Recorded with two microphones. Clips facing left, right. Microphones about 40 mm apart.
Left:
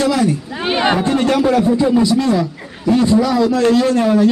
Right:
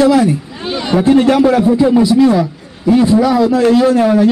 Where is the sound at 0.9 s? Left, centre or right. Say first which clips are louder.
Right 6 dB; centre.